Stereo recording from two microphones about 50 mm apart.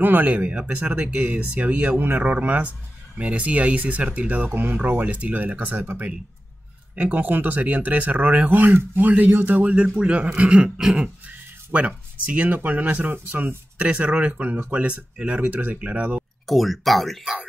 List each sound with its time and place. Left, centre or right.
0.0 s speech: right
5.0 s speech: right
9.8 s speech: centre
16.4 s speech: centre